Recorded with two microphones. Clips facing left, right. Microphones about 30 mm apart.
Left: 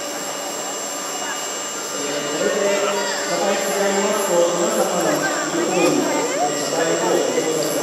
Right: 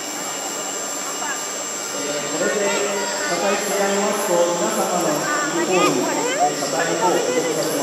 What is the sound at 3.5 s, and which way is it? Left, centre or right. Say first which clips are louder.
Speech: left 1 dB; centre.